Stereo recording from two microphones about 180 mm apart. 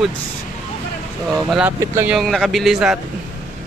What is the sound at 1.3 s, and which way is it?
Speech, centre (ahead or behind).